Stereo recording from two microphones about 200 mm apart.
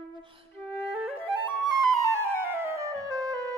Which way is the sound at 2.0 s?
15° right (ahead or behind).